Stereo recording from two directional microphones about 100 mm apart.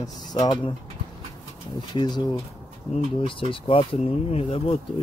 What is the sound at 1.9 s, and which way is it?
Speech, 50° left (ahead or behind).